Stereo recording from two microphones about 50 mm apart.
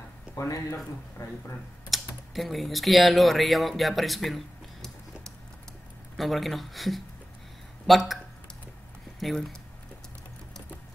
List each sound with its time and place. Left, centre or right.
0.4 s speech: left
1.9 s a sound: centre
2.3 s speech: centre
6.1 s speech: centre
9.2 s speech: centre